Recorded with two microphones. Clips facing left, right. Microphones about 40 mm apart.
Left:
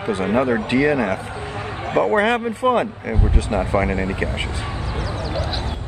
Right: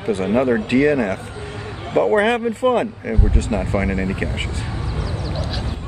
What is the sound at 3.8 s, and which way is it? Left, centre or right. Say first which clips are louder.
Speech: left 1 dB; centre.